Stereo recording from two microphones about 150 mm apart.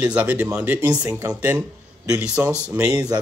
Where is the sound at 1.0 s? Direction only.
25° right (ahead or behind).